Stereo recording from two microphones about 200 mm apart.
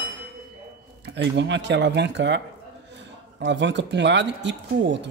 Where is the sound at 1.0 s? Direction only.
60° right (ahead or behind).